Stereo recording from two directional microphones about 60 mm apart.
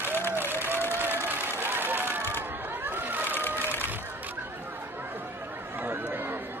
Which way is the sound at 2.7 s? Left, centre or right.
Right.